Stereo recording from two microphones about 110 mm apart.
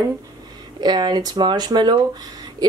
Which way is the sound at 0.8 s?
40° right (ahead or behind).